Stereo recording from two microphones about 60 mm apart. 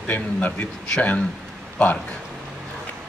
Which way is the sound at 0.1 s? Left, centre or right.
Left.